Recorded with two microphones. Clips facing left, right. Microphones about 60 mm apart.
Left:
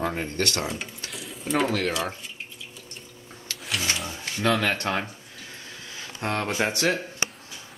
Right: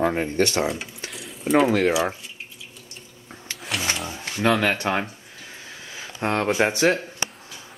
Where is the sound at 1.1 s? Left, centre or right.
Centre.